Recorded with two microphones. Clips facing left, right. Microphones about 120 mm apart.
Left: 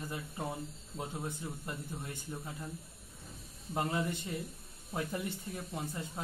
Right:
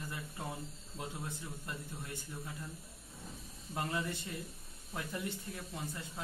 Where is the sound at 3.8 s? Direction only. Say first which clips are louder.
Left 4 dB; 15° left (ahead or behind).